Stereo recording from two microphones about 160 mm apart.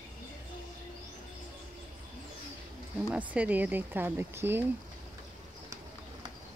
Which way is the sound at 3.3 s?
10° right (ahead or behind).